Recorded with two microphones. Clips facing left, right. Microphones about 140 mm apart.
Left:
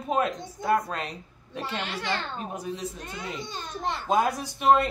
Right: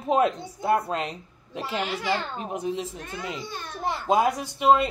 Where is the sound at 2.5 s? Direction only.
30° right (ahead or behind).